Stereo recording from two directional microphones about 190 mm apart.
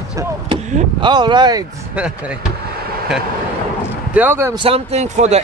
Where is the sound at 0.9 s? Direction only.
25° right (ahead or behind).